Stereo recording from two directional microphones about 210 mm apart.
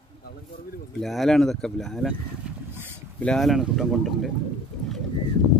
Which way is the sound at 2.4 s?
5° right (ahead or behind).